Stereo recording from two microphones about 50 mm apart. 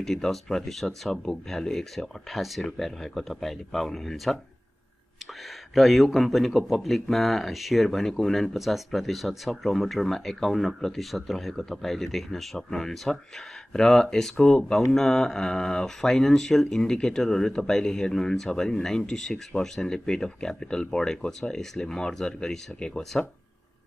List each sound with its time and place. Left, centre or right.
0.0 s speech: centre
5.8 s speech: centre